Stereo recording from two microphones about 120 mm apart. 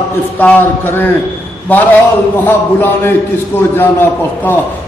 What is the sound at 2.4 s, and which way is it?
A man's voice, 20° left (ahead or behind).